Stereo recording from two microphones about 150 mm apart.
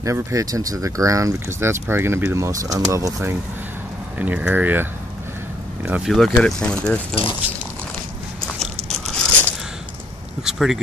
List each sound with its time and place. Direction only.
0.0 s speech: 20° right (ahead or behind)
5.9 s speech: 10° right (ahead or behind)
6.1 s speech: 5° left (ahead or behind)
8.8 s biting: 5° left (ahead or behind)
10.4 s speech: centre (ahead or behind)